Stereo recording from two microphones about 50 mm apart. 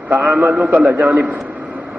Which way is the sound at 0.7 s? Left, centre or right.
Right.